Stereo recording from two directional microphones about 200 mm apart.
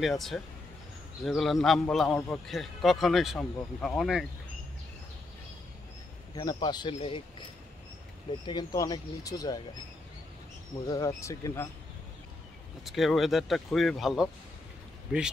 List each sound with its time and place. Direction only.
0.0 s a man's voice: centre (ahead or behind)
6.3 s speech: 20° left (ahead or behind)
8.5 s speech: 20° left (ahead or behind)
10.9 s speech: 15° left (ahead or behind)
12.8 s a man's voice: centre (ahead or behind)